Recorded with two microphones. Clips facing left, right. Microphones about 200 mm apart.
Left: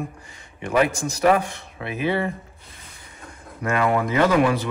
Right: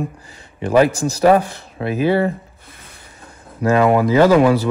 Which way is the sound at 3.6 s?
30° right (ahead or behind).